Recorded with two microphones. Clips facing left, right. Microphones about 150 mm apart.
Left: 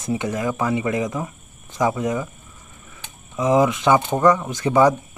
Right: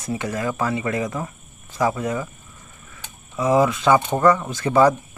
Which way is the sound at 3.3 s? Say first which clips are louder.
Left 1 dB; 15° left (ahead or behind).